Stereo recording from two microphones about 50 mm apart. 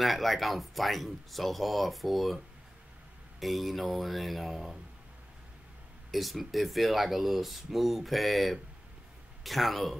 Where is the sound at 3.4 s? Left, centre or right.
Centre.